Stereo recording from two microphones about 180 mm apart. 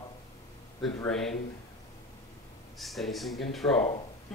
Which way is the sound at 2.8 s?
Centre (ahead or behind).